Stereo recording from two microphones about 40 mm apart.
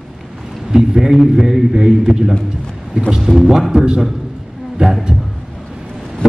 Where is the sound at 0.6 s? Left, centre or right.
Centre.